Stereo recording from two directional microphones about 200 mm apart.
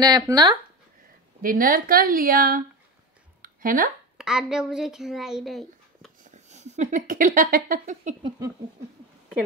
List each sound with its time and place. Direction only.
0.0 s speech: 20° right (ahead or behind)
1.4 s speech: 45° right (ahead or behind)
3.4 s a sound: 45° right (ahead or behind)
4.2 s a woman's voice: 5° right (ahead or behind)
6.2 s speech: 35° right (ahead or behind)